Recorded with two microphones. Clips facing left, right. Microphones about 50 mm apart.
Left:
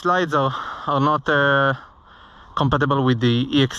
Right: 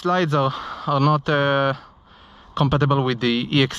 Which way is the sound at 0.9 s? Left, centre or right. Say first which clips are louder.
Left 1 dB; right.